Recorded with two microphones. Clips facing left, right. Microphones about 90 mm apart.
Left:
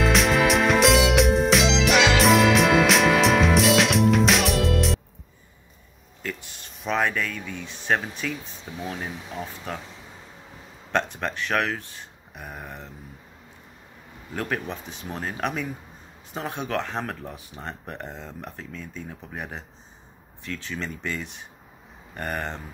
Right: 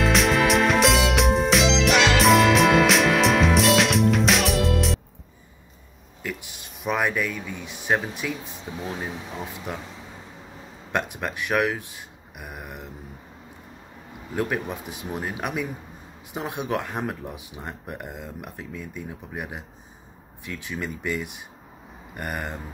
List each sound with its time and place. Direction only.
0.0 s music: centre (ahead or behind)
6.2 s speech: 15° right (ahead or behind)
10.9 s speech: 10° right (ahead or behind)
14.3 s speech: 15° right (ahead or behind)